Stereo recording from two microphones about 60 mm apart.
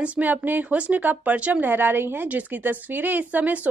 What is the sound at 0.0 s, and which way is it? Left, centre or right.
A woman's voice, right.